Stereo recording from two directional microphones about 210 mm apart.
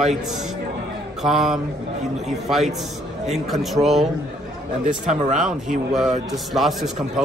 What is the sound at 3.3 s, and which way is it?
Speech, centre (ahead or behind).